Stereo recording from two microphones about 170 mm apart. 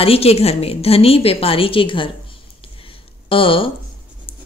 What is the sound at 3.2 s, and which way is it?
Speech, 30° left (ahead or behind).